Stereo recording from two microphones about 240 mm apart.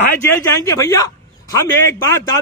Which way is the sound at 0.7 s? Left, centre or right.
Centre.